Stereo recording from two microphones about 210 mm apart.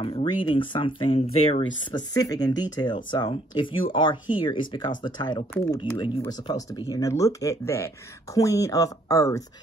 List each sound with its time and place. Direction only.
0.0 s speech: 25° left (ahead or behind)